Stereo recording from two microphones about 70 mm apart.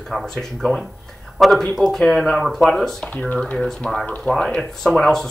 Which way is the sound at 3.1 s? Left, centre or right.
Centre.